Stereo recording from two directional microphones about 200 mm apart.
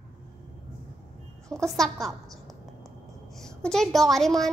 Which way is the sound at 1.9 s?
15° right (ahead or behind).